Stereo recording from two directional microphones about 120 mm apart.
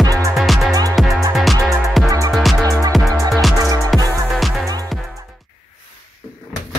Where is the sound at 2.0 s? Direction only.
25° right (ahead or behind).